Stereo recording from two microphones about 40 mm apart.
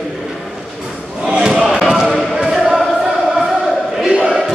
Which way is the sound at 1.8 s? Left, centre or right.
Centre.